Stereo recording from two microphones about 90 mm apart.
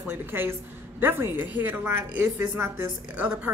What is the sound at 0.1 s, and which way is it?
A woman's voice, 25° right (ahead or behind).